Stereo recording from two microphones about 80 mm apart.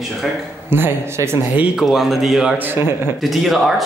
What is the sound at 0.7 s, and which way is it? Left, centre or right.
Speech, right.